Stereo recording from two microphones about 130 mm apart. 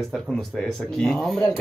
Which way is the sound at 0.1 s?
5° left (ahead or behind).